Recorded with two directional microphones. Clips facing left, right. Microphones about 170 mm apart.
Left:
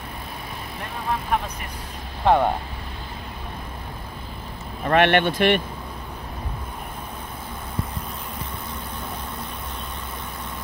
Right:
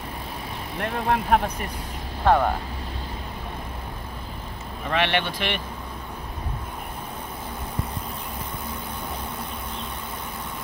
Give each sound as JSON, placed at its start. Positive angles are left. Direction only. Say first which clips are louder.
{"t": 0.7, "sound": "speech", "louder": "right 5 dB", "side_deg": -70}
{"t": 2.2, "sound": "speech", "louder": "left 1 dB", "side_deg": 15}
{"t": 4.8, "sound": "speech", "louder": "left 6 dB", "side_deg": 55}